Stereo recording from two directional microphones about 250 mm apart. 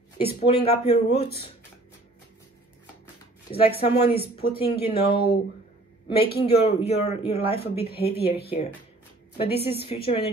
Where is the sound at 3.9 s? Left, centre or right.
Left.